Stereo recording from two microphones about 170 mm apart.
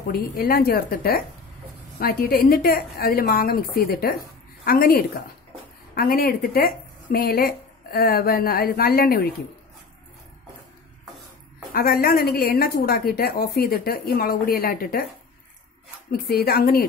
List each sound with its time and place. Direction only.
0.1 s a woman's voice: 60° left (ahead or behind)
11.7 s a woman's voice: 60° left (ahead or behind)
16.1 s a woman's voice: 65° left (ahead or behind)